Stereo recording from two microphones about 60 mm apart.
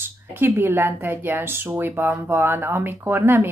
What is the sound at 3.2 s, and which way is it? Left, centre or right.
Speech, right.